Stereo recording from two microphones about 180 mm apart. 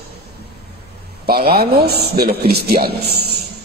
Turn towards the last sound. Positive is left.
turn(degrees=-60)  # may be behind; listen again after turning